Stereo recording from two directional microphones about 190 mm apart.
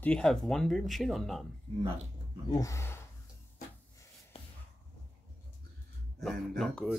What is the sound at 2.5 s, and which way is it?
Speech, 15° left (ahead or behind).